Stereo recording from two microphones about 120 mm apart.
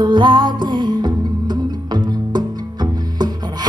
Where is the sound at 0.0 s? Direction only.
40° right (ahead or behind).